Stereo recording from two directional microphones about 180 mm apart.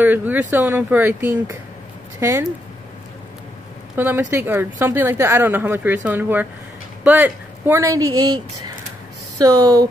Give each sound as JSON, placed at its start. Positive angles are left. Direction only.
{"t": 0.0, "sound": "a woman's voice", "side_deg": -10}
{"t": 3.9, "sound": "a woman's voice", "side_deg": -10}
{"t": 9.4, "sound": "speech", "side_deg": -20}